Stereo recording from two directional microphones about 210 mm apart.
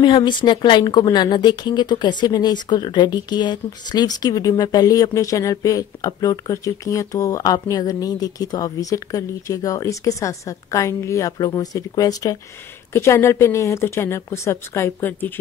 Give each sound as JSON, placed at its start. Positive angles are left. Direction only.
{"t": 0.0, "sound": "speech", "side_deg": 20}